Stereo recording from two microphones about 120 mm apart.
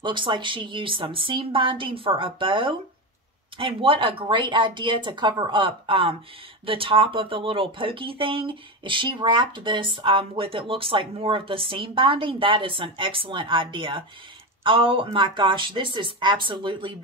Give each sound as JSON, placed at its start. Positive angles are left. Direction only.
{"t": 0.0, "sound": "speech", "side_deg": -40}